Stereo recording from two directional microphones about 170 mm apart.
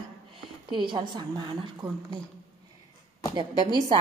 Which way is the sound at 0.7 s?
25° right (ahead or behind).